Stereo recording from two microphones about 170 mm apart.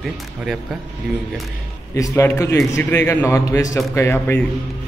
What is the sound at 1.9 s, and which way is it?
A man's voice, 20° left (ahead or behind).